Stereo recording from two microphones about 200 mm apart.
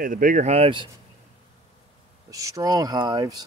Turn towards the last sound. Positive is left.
turn(degrees=-20)  # may be behind; listen again after turning